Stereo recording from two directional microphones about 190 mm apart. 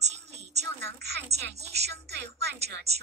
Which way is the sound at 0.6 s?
65° right (ahead or behind).